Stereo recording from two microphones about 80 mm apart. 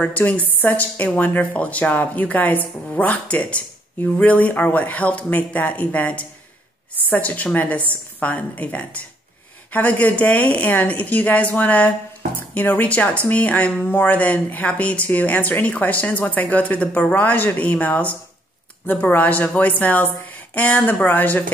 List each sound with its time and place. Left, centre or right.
0.3 s a woman's voice: centre